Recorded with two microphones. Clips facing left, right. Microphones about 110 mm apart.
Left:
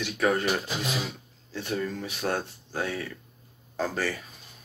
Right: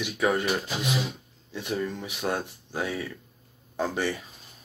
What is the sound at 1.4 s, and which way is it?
Speech, 15° right (ahead or behind).